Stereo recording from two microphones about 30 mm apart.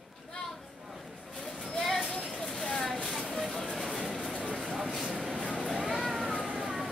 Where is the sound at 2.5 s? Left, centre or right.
Left.